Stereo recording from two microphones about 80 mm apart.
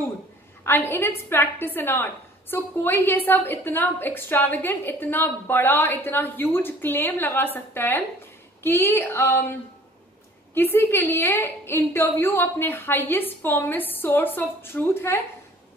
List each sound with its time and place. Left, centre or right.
0.7 s a woman's voice: left
10.5 s a woman's voice: left